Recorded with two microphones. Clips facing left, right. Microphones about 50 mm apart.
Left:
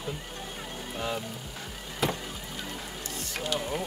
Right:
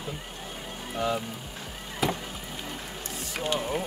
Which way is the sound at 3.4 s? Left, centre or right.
Right.